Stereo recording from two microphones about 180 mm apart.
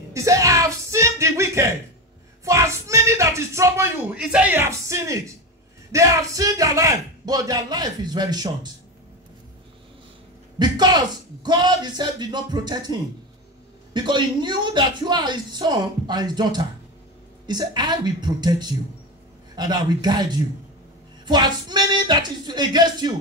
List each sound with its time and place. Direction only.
0.1 s a sound: 15° right (ahead or behind)
2.4 s speech: 15° right (ahead or behind)
10.6 s speech: 25° right (ahead or behind)
13.9 s speech: 25° right (ahead or behind)